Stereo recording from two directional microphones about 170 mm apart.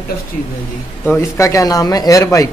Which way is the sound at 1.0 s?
15° left (ahead or behind).